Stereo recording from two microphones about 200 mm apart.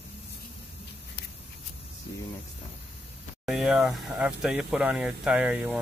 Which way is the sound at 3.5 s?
Centre (ahead or behind).